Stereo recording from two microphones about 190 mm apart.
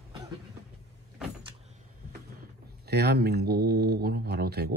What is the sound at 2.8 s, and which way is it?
Speech, 55° right (ahead or behind).